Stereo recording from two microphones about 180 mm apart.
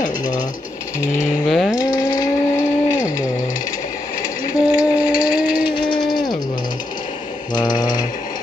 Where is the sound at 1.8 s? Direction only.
20° left (ahead or behind).